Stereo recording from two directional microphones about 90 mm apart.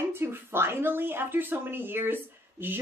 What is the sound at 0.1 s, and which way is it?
A woman's voice, 25° right (ahead or behind).